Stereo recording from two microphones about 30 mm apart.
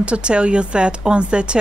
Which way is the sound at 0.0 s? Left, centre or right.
Right.